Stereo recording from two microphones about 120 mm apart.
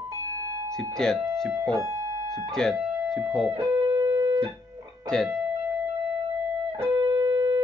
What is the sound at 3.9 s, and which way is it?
Music, 30° right (ahead or behind).